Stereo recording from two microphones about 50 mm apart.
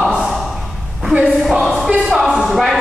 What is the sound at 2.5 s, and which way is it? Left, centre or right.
Speech, centre.